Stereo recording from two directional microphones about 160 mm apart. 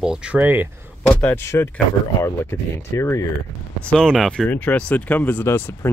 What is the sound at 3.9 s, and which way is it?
Speech, 5° left (ahead or behind).